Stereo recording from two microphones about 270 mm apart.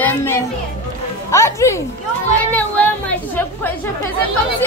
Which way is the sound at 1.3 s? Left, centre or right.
Centre.